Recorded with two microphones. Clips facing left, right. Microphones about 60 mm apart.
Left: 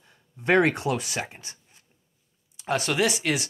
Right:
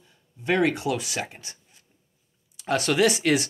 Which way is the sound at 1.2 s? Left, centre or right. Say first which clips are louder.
Even; left.